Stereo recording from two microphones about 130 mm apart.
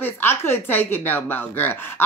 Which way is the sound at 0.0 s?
15° left (ahead or behind).